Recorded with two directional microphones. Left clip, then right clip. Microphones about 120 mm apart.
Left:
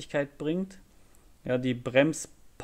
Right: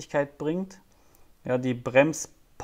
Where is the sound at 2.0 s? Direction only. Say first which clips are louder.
Right 1 dB; 40° left (ahead or behind).